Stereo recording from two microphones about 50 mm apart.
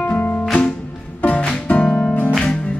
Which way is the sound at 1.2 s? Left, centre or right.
Left.